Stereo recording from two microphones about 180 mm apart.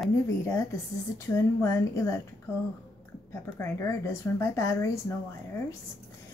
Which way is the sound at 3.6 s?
15° left (ahead or behind).